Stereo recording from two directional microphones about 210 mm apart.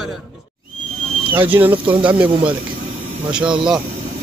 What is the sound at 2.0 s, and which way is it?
Speech, 5° right (ahead or behind).